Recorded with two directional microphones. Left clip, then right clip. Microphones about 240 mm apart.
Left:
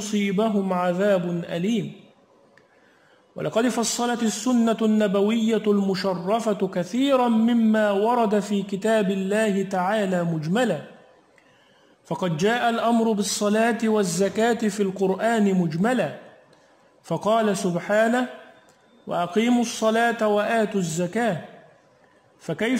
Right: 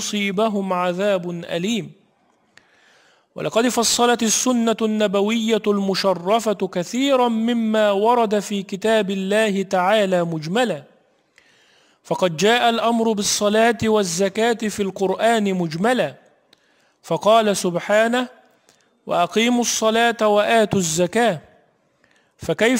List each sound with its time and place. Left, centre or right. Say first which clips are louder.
0.0 s a man's voice: right 4 dB; right
3.3 s a man's voice: right 4 dB; right
12.0 s a man's voice: right 6 dB; right
22.4 s a man's voice: right 7 dB; right